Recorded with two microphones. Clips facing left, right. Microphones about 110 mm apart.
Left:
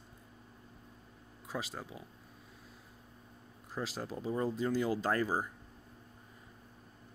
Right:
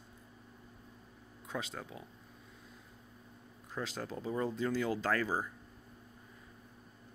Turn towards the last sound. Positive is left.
turn(degrees=15)  # may be behind; listen again after turning